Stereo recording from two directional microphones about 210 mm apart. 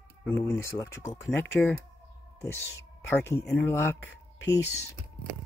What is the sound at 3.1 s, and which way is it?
Speech, 10° left (ahead or behind).